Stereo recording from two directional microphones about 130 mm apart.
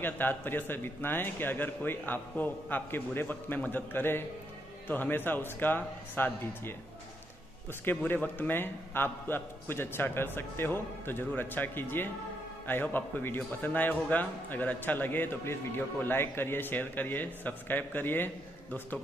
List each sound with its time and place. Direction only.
0.0 s a man's voice: 15° left (ahead or behind)
7.8 s a man's voice: 15° left (ahead or behind)